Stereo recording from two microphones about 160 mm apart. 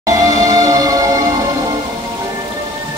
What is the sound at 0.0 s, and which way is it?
Music, 20° right (ahead or behind).